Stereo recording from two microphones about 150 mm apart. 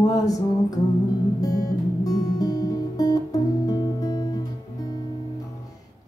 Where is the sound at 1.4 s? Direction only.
25° left (ahead or behind).